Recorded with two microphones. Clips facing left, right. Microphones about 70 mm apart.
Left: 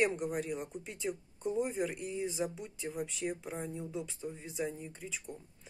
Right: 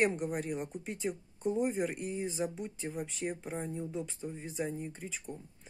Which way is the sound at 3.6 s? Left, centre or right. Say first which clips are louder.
Right 2 dB; centre.